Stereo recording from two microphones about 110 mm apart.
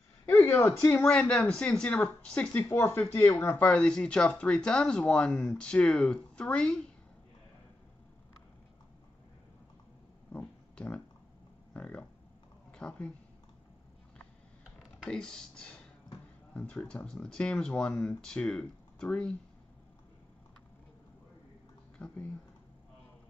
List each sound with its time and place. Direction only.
0.3 s speech: 25° left (ahead or behind)
0.8 s speech: 10° left (ahead or behind)
10.3 s a sound: 10° left (ahead or behind)
11.7 s a woman's voice: 10° left (ahead or behind)
14.6 s computer keyboard: 5° right (ahead or behind)
15.0 s speech: 5° left (ahead or behind)
21.9 s speech: 10° left (ahead or behind)